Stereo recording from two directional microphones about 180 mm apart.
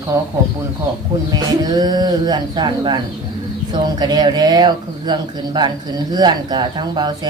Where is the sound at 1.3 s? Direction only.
20° right (ahead or behind).